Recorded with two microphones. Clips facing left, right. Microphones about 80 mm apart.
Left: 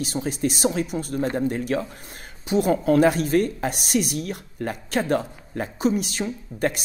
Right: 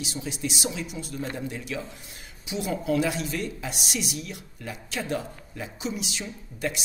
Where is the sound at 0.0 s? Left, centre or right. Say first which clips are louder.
Left 7 dB; left.